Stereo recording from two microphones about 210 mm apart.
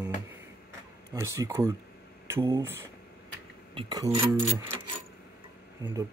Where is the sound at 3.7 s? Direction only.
20° right (ahead or behind).